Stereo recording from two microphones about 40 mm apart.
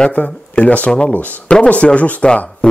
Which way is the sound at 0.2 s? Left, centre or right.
Left.